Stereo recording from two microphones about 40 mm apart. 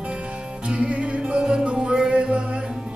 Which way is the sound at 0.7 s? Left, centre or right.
Right.